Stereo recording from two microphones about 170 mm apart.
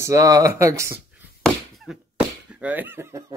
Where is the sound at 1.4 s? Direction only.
Centre (ahead or behind); by 3.3 s 15° right (ahead or behind).